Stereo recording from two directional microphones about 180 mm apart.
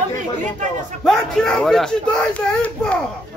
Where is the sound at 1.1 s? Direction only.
5° left (ahead or behind).